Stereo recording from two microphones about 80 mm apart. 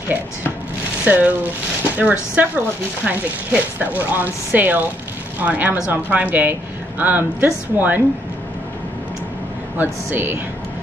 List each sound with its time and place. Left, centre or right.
1.0 s speech: centre
9.8 s speech: right